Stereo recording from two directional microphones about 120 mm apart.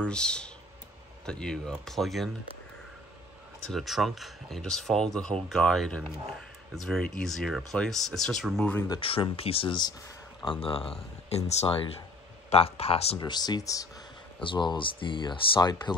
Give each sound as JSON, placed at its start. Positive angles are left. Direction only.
{"t": 0.0, "sound": "speech", "side_deg": 5}
{"t": 3.6, "sound": "speech", "side_deg": 0}
{"t": 9.0, "sound": "speech", "side_deg": 50}
{"t": 13.2, "sound": "speech", "side_deg": 35}
{"t": 14.4, "sound": "speech", "side_deg": 40}